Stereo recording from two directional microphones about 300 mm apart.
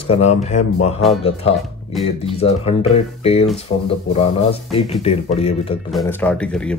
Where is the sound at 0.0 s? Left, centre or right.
Left.